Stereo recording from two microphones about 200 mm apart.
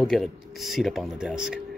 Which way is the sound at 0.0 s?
Centre (ahead or behind).